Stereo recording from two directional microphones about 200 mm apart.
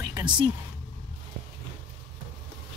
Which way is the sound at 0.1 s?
25° right (ahead or behind).